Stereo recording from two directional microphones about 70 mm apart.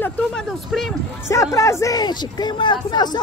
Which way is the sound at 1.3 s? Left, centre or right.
Left.